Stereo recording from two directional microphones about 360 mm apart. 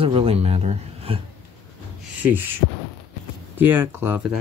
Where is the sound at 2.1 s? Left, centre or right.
Centre.